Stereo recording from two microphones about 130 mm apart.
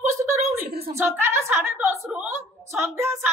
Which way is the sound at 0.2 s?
20° right (ahead or behind).